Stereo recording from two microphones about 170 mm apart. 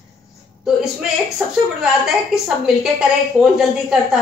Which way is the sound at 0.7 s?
5° right (ahead or behind).